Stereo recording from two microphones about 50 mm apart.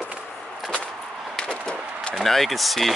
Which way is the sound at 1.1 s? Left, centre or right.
Centre.